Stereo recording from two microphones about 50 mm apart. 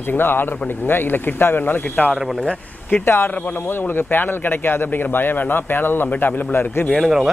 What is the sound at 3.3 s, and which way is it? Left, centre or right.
Speech, left.